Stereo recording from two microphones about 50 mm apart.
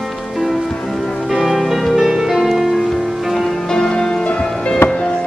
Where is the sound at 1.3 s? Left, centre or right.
Centre.